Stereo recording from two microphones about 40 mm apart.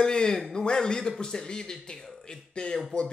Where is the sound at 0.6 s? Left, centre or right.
Centre.